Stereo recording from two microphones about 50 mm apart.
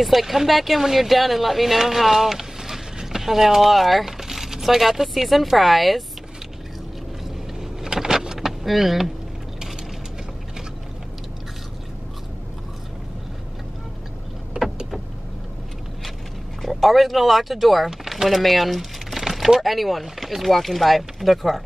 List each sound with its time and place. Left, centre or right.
0.0 s speech: centre
7.8 s power windows: centre
14.5 s vehicle: centre
16.6 s speech: centre